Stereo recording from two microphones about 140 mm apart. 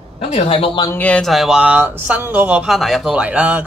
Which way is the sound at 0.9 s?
10° left (ahead or behind).